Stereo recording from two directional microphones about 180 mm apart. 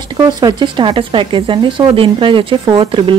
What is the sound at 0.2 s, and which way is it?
Speech, 20° right (ahead or behind).